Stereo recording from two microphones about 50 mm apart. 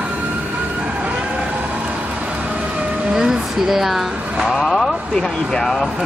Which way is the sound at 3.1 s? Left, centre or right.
Centre.